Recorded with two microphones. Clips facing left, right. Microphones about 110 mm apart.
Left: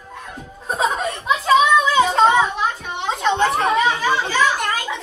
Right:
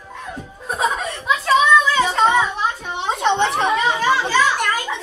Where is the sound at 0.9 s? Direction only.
Centre (ahead or behind).